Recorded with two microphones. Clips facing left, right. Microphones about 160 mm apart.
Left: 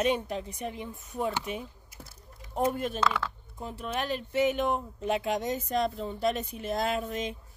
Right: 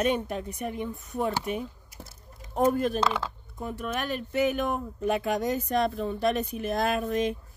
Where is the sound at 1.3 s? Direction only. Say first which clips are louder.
Right 3 dB; 35° right (ahead or behind).